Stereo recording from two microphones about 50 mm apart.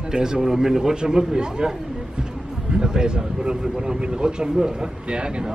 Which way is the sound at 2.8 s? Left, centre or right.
Centre.